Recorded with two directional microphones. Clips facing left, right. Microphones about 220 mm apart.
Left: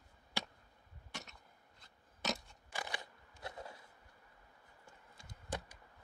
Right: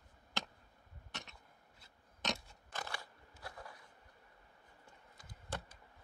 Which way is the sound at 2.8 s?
20° left (ahead or behind).